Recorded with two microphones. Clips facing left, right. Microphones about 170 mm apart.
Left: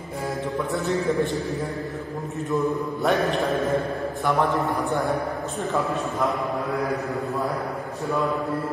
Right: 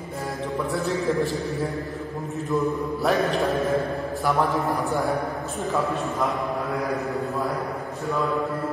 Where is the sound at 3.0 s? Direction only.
Centre (ahead or behind).